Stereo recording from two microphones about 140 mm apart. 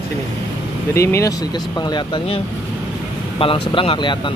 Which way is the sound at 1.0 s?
20° left (ahead or behind).